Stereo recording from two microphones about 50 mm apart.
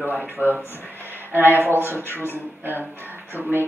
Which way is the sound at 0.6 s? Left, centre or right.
Left.